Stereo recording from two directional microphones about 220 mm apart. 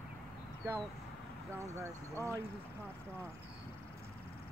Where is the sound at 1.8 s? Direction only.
15° right (ahead or behind).